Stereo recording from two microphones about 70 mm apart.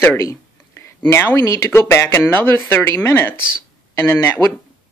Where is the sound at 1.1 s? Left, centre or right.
Left.